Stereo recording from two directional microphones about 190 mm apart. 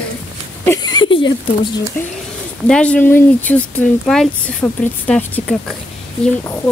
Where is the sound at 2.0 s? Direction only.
10° left (ahead or behind).